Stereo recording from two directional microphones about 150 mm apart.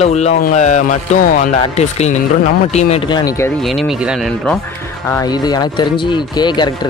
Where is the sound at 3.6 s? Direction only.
Centre (ahead or behind).